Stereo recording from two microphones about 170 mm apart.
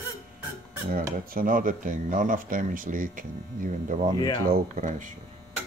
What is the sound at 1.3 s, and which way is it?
Speech, 55° right (ahead or behind).